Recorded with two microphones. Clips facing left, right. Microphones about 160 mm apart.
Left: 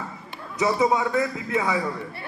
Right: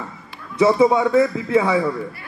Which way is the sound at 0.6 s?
30° right (ahead or behind).